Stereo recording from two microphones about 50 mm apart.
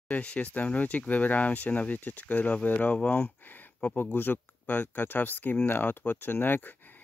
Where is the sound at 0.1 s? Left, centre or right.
Left.